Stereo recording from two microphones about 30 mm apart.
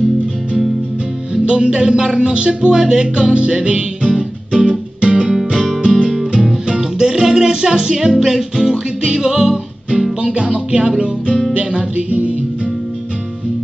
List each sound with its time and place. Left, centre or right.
1.4 s music: right
5.1 s music: right
6.8 s music: centre
10.2 s music: right
11.9 s music: right